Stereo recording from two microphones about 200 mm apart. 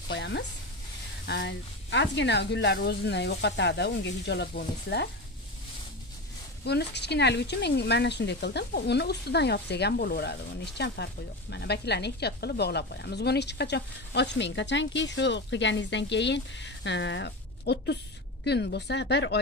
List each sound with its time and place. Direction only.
0.1 s speech: 60° left (ahead or behind)
6.6 s speech: 55° left (ahead or behind)